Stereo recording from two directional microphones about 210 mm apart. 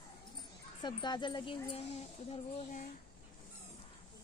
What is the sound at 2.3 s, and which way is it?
Speech, 35° left (ahead or behind).